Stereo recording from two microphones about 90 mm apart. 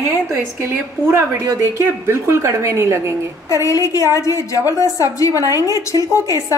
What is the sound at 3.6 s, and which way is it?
A woman's voice, 40° left (ahead or behind).